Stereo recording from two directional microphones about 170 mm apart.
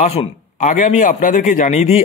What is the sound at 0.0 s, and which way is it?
A man's voice, 40° left (ahead or behind).